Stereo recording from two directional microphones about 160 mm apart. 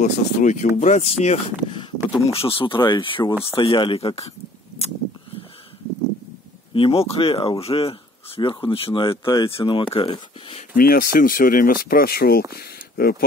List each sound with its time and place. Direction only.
0.0 s speech: 50° left (ahead or behind)
6.7 s speech: 35° left (ahead or behind)
10.8 s speech: 65° left (ahead or behind)